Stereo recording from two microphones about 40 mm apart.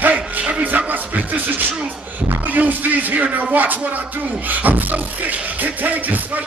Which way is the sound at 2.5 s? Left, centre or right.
Right.